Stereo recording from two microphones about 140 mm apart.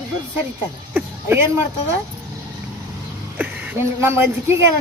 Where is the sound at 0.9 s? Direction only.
10° right (ahead or behind).